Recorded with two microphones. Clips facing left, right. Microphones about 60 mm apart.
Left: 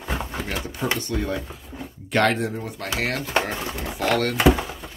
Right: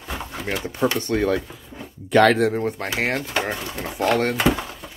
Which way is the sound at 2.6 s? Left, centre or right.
Right.